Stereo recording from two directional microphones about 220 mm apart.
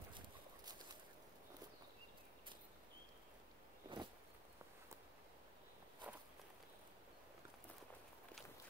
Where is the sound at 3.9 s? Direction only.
20° right (ahead or behind).